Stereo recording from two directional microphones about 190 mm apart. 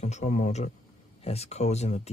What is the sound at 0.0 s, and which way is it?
Speech, 40° left (ahead or behind).